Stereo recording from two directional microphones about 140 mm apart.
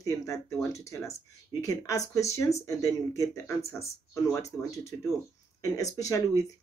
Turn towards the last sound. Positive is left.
turn(degrees=25)  # may be behind; listen again after turning